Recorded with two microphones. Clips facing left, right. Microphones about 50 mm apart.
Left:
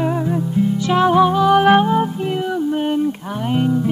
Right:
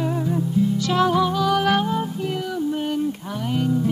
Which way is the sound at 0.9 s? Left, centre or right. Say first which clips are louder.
Left 7 dB; left.